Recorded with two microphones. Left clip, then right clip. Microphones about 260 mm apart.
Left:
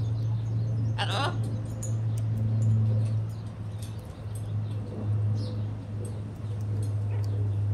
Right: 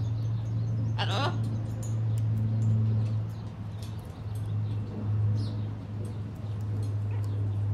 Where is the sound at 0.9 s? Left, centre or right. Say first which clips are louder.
Left 1 dB; left.